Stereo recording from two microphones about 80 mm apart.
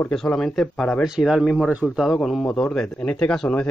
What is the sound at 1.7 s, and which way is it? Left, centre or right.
Speech, centre.